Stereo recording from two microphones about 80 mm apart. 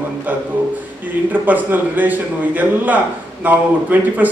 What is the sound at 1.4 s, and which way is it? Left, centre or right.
A man's voice, right.